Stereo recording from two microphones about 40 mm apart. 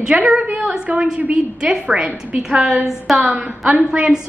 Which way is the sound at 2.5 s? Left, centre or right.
Right.